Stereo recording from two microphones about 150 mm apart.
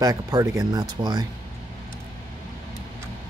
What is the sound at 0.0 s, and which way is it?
Speech, 25° right (ahead or behind).